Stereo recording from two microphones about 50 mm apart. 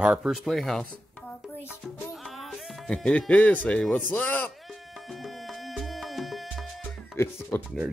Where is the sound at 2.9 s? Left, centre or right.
Left.